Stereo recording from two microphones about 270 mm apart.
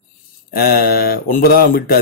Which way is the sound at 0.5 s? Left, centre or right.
Left.